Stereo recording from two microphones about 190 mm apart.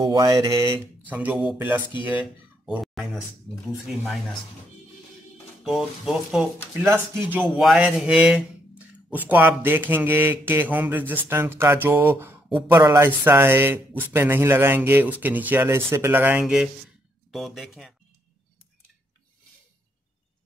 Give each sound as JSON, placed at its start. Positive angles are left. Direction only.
{"t": 0.0, "sound": "mantra", "side_deg": -20}
{"t": 1.0, "sound": "speech", "side_deg": -10}
{"t": 5.6, "sound": "speech", "side_deg": 0}
{"t": 6.8, "sound": "speech", "side_deg": -15}
{"t": 12.7, "sound": "speech", "side_deg": -15}